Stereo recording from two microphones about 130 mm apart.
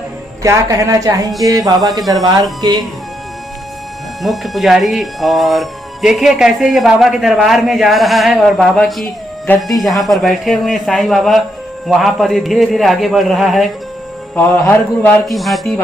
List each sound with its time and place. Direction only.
0.4 s a woman's voice: 25° right (ahead or behind)
4.2 s speech: centre (ahead or behind)
14.3 s a man's voice: 15° left (ahead or behind)
15.2 s speech: centre (ahead or behind)